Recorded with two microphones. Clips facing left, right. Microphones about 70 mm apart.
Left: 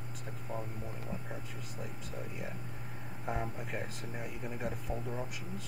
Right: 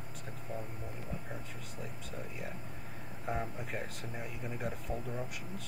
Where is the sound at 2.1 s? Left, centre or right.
Centre.